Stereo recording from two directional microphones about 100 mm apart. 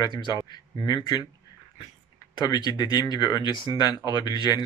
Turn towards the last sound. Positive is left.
turn(degrees=45)  # may be behind; listen again after turning